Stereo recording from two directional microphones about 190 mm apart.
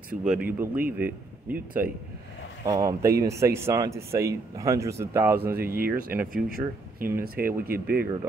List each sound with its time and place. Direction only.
0.1 s speech: 40° right (ahead or behind)
0.5 s speech: 10° right (ahead or behind)
2.6 s speech: 20° right (ahead or behind)
5.7 s speech: 50° right (ahead or behind)
7.1 s speech: 15° right (ahead or behind)
7.8 s speech: 55° right (ahead or behind)